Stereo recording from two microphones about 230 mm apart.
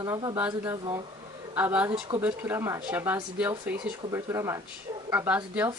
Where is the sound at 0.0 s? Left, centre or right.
Centre.